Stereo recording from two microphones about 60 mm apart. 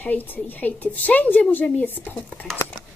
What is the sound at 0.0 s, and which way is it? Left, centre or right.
Speech, left.